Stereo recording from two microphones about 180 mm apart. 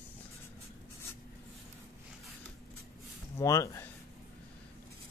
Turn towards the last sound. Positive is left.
turn(degrees=20)  # may be behind; listen again after turning